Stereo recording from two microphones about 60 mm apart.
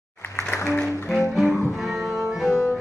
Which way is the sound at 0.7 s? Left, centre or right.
Left.